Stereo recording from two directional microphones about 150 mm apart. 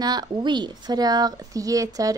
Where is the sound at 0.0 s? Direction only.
25° right (ahead or behind).